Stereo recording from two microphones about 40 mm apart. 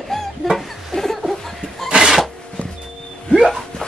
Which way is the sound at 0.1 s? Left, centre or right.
Centre.